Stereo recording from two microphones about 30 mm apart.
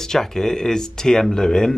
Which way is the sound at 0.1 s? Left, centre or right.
Centre.